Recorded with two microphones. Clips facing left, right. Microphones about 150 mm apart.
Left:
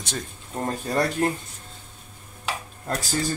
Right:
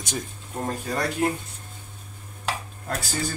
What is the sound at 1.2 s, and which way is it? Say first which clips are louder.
Speech: right 3 dB; 10° right (ahead or behind).